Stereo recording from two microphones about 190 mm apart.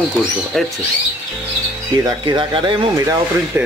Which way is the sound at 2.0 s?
25° right (ahead or behind).